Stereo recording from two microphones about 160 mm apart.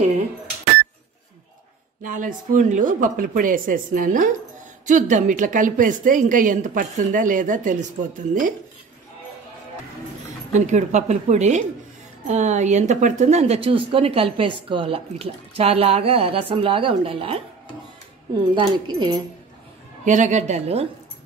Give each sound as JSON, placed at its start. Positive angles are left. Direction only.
{"t": 2.0, "sound": "a woman's voice", "side_deg": -55}
{"t": 10.5, "sound": "a woman's voice", "side_deg": -50}
{"t": 18.5, "sound": "speech", "side_deg": -30}
{"t": 20.1, "sound": "a woman's voice", "side_deg": -50}